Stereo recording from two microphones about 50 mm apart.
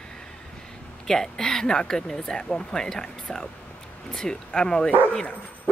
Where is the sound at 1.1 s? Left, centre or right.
Centre.